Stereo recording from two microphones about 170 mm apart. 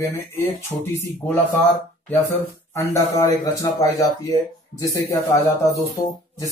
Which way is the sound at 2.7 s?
15° left (ahead or behind).